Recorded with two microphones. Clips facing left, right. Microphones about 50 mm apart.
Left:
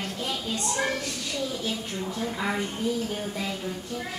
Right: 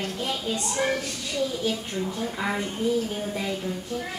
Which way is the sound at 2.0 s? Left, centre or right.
Centre.